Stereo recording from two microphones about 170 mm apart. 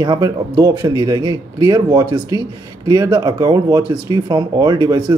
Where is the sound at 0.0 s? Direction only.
20° right (ahead or behind).